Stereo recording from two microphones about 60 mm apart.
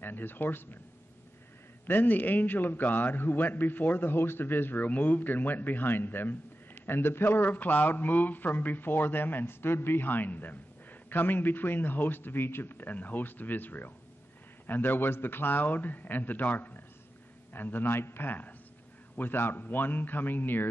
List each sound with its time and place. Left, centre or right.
0.0 s a man's voice: left
1.9 s a man's voice: left